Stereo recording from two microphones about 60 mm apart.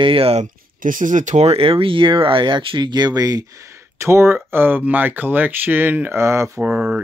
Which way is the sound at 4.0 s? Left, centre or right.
Right.